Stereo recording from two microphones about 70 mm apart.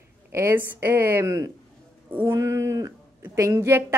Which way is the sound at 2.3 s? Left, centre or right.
Right.